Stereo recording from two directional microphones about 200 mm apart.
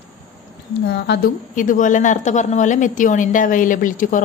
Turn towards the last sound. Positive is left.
turn(degrees=40)  # may be behind; listen again after turning